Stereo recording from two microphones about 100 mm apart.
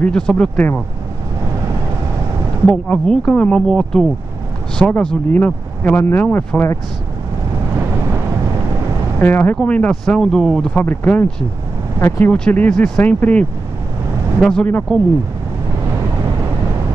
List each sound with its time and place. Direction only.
0.0 s speech: 10° left (ahead or behind)
2.6 s speech: 5° left (ahead or behind)
9.2 s speech: 20° left (ahead or behind)
9.6 s speech: 10° left (ahead or behind)
10.8 s speech: 15° left (ahead or behind)
12.3 s speech: 10° left (ahead or behind)